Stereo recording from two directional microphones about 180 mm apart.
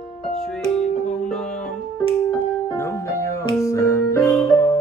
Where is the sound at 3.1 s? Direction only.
15° left (ahead or behind).